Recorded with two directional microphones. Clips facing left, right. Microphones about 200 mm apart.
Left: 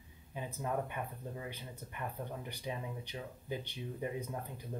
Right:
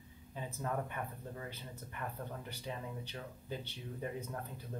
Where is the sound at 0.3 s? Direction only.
15° left (ahead or behind).